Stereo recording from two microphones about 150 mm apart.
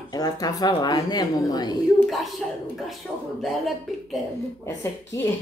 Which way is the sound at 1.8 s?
Centre (ahead or behind).